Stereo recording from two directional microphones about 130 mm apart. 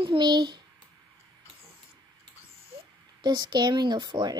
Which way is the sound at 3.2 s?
35° right (ahead or behind).